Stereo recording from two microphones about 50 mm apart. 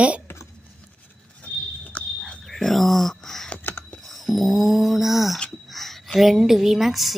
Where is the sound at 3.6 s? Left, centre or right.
Left.